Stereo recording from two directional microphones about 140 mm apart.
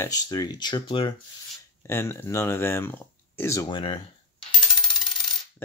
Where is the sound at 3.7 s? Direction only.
35° left (ahead or behind).